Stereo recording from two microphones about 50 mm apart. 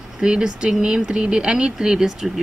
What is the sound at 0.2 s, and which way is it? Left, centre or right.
A woman's voice, centre.